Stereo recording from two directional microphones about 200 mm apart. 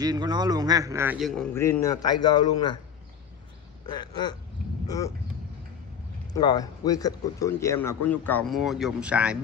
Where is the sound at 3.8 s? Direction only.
20° left (ahead or behind).